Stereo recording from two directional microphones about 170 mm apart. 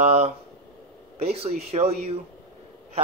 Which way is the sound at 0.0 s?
40° right (ahead or behind).